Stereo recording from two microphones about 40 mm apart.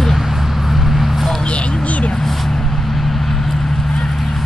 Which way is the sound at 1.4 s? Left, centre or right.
Left.